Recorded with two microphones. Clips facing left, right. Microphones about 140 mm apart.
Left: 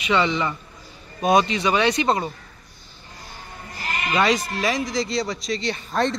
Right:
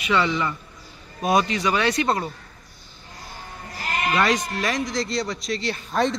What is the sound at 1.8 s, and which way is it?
Speech, centre (ahead or behind).